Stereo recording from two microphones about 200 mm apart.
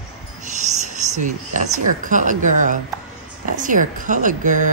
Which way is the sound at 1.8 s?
40° right (ahead or behind).